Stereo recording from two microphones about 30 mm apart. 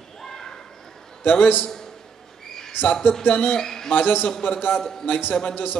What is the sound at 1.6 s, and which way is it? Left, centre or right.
Speech, centre.